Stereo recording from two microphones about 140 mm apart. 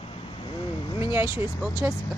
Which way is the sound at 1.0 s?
15° right (ahead or behind).